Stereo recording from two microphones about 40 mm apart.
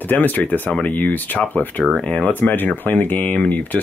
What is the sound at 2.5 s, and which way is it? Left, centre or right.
Speech, left.